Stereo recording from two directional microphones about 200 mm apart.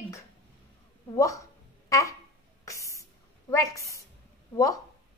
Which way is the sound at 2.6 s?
15° left (ahead or behind).